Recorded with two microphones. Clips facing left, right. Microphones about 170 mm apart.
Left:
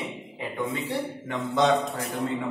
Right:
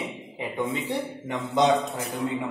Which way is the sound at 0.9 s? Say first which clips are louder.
Right 1 dB; 15° right (ahead or behind).